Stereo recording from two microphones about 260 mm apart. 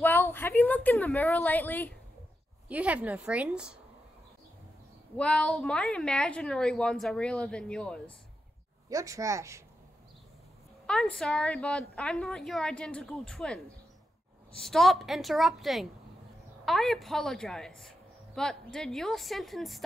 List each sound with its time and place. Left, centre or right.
0.0 s a woman's voice: centre
2.7 s a woman's voice: centre
5.1 s a woman's voice: centre
8.8 s speech: centre
10.9 s a woman's voice: centre